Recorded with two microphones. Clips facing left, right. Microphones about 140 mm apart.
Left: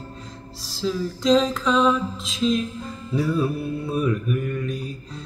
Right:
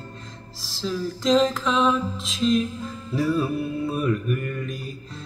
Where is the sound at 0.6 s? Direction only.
Centre (ahead or behind).